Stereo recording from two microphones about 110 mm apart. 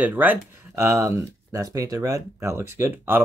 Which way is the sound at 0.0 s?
15° right (ahead or behind).